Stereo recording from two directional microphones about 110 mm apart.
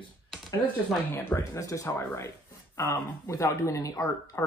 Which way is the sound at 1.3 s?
25° left (ahead or behind).